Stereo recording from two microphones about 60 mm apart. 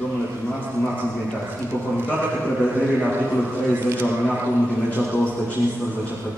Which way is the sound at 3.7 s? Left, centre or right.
Right.